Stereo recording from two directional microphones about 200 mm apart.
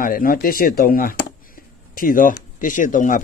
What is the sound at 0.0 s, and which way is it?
Speech, 45° left (ahead or behind).